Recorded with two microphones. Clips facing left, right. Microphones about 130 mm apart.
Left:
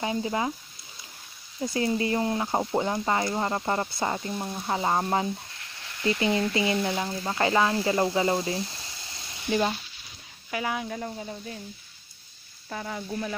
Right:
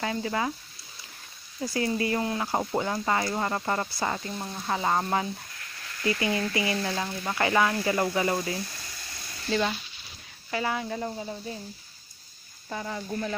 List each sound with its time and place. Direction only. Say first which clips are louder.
0.0 s speech: left 1 dB; 20° left (ahead or behind)
1.6 s speech: left 1 dB; 25° left (ahead or behind); by 11.0 s 10° left (ahead or behind)
11.0 s speech: right 2 dB; 5° right (ahead or behind)
12.6 s speech: even; centre (ahead or behind)
13.1 s speech: right 1 dB; 10° left (ahead or behind)